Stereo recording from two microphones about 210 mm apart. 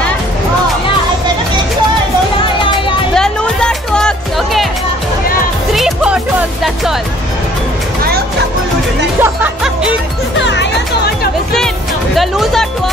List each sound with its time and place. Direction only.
3.2 s music: 5° left (ahead or behind)
5.7 s music: centre (ahead or behind)
9.2 s music: 5° right (ahead or behind)
10.4 s music: 55° left (ahead or behind)
12.2 s music: centre (ahead or behind)